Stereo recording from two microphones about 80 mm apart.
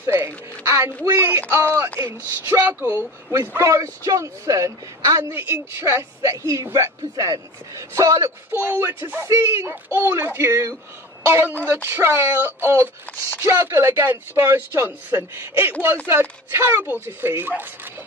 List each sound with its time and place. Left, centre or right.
0.0 s speech: right
3.3 s a man's voice: right
5.4 s a man's voice: right
8.5 s speech: right